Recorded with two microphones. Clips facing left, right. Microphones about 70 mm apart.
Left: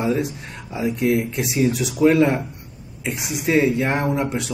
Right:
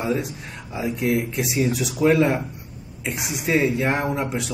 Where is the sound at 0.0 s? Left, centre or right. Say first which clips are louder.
Left 3 dB; centre.